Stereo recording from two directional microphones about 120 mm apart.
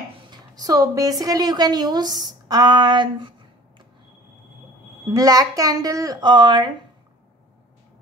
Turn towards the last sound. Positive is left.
turn(degrees=-40)  # may be behind; listen again after turning